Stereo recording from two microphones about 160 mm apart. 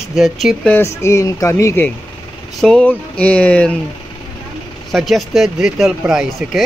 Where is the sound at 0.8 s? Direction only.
15° left (ahead or behind).